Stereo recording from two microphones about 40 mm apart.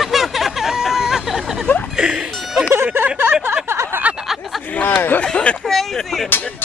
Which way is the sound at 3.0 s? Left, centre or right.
Right.